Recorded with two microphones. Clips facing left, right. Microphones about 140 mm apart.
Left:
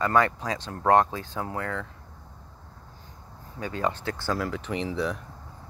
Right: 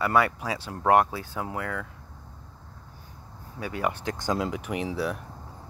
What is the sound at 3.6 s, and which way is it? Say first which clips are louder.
Speech: even; 10° right (ahead or behind).